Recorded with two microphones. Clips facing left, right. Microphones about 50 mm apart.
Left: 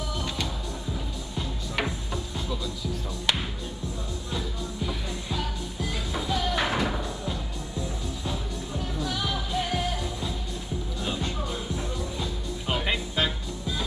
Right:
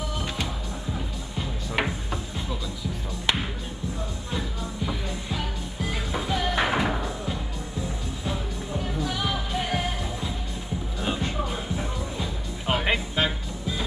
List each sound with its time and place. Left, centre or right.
0.9 s music: right
4.3 s music: right
8.8 s music: right